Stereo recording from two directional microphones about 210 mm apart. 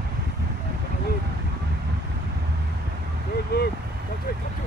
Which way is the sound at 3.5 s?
50° left (ahead or behind).